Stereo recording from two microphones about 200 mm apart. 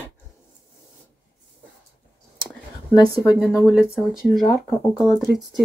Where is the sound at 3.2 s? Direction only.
Centre (ahead or behind).